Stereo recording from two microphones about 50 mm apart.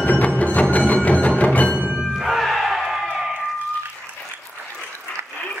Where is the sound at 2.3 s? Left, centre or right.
Centre.